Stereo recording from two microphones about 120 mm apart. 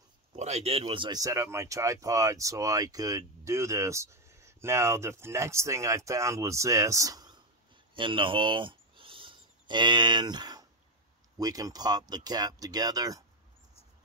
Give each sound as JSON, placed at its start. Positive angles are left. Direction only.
{"t": 0.4, "sound": "speech", "side_deg": -65}
{"t": 1.2, "sound": "speech", "side_deg": -25}
{"t": 7.9, "sound": "a sound", "side_deg": -45}
{"t": 11.3, "sound": "speech", "side_deg": -30}